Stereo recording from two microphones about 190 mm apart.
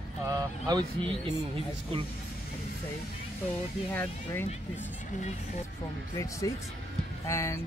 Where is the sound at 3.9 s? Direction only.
10° left (ahead or behind).